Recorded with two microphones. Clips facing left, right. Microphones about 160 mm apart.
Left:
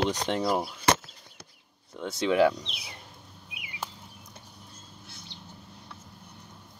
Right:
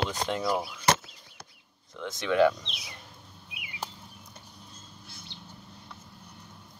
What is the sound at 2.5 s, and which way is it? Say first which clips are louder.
Speech: left 2 dB; 30° left (ahead or behind).